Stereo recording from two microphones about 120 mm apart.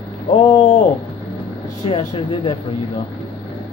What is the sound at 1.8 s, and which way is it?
Speech, 55° left (ahead or behind).